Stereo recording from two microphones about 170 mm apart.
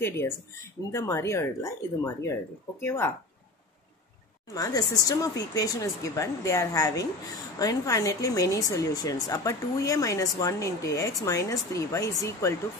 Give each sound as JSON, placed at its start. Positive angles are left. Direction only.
{"t": 0.9, "sound": "speech", "side_deg": 15}
{"t": 4.6, "sound": "speech", "side_deg": 20}